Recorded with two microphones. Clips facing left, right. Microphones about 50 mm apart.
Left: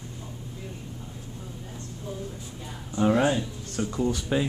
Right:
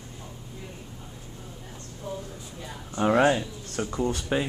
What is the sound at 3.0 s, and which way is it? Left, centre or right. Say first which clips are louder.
Speech: right 1 dB; right.